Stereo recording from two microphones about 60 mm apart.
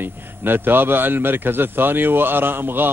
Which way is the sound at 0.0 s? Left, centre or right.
Right.